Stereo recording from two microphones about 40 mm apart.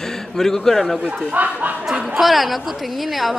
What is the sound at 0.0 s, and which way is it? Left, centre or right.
Speech, centre.